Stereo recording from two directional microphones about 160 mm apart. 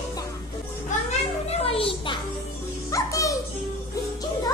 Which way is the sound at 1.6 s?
35° left (ahead or behind).